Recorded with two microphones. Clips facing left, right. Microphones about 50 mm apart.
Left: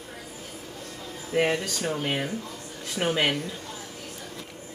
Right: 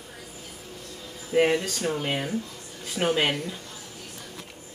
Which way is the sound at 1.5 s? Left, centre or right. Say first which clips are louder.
Right 2 dB; centre.